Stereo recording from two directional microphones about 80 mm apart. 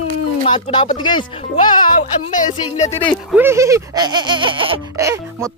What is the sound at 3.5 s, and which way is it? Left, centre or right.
Speech, right.